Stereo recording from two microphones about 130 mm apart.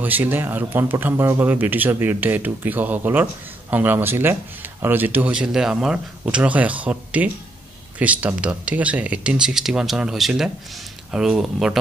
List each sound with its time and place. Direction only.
0.0 s speech: 15° right (ahead or behind)